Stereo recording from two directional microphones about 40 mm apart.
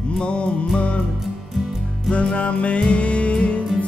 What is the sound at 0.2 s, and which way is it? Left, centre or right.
Music, left.